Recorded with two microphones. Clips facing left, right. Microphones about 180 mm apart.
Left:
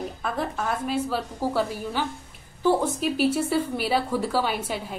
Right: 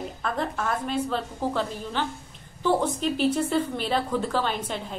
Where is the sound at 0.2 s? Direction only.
5° left (ahead or behind).